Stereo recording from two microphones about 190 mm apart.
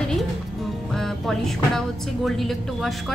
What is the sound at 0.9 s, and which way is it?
Music, centre (ahead or behind).